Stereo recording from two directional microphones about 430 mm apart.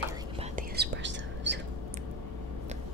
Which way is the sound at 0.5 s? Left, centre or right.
Right.